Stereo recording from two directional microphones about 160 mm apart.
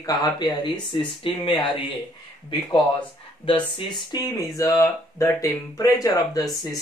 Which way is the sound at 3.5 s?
35° left (ahead or behind).